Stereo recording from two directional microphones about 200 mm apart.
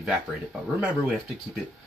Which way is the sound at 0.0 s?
5° right (ahead or behind).